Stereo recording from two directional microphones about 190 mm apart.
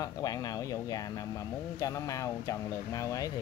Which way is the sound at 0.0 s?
20° left (ahead or behind).